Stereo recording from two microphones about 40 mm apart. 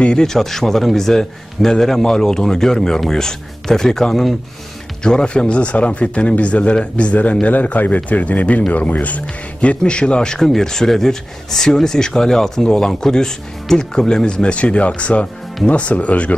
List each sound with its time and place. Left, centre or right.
0.0 s speech: centre
5.0 s a man's voice: left